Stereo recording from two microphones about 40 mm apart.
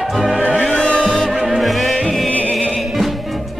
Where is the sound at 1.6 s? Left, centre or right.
Centre.